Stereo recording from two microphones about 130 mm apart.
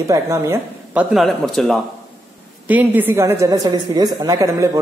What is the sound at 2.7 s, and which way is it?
A woman's voice, 15° right (ahead or behind).